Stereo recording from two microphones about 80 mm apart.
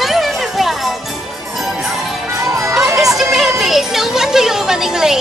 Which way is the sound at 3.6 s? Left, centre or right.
Centre.